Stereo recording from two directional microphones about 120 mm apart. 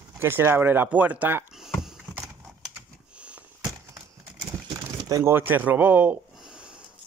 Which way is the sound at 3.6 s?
35° right (ahead or behind).